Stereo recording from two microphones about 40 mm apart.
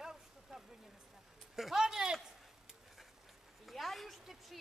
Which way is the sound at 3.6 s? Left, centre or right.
Centre.